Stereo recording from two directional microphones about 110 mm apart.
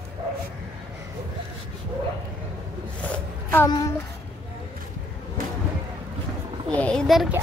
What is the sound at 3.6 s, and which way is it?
Speech, 35° left (ahead or behind).